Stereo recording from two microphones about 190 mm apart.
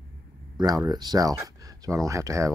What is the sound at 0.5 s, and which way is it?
Speech, 20° right (ahead or behind).